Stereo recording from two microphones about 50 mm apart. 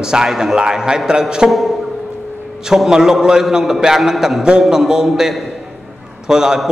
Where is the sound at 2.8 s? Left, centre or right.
Centre.